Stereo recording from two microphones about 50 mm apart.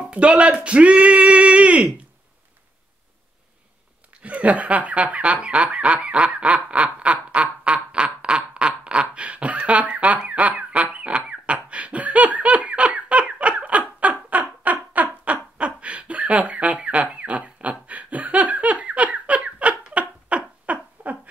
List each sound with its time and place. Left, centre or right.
0.1 s speech: right
4.2 s snicker: right
8.5 s a sound: right